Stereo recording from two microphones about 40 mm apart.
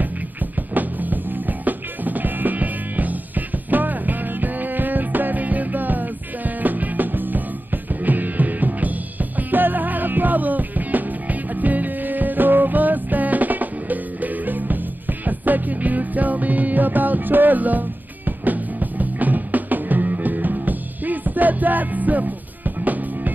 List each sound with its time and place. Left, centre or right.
0.0 s music: right